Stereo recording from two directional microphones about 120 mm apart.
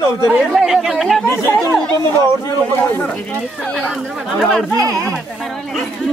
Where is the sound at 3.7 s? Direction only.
5° left (ahead or behind).